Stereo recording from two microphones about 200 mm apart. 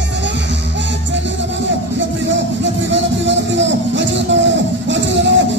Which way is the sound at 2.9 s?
65° right (ahead or behind).